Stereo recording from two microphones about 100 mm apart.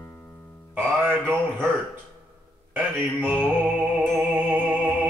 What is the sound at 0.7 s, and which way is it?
Music, 20° right (ahead or behind).